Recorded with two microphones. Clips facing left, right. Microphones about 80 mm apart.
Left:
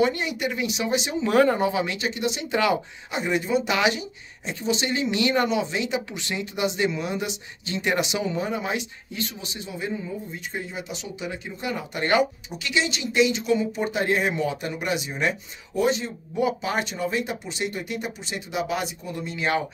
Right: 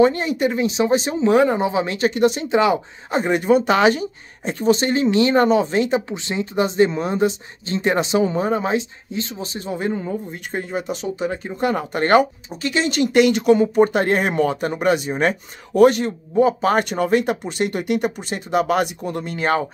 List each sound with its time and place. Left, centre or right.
0.0 s speech: right
1.3 s speech: centre
2.0 s speech: right
2.5 s speech: right
3.1 s speech: right
15.7 s speech: right
16.3 s speech: right